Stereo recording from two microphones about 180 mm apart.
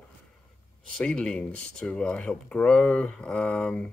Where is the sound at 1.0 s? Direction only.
5° left (ahead or behind).